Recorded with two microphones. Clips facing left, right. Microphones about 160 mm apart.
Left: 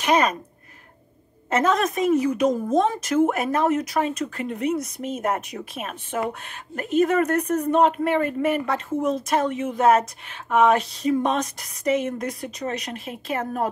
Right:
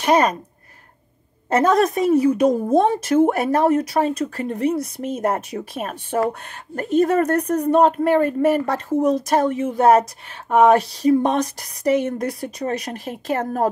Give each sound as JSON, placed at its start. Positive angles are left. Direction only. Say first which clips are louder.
{"t": 0.0, "sound": "speech", "louder": "right 3 dB", "side_deg": -35}
{"t": 1.5, "sound": "speech", "louder": "right 5 dB", "side_deg": -35}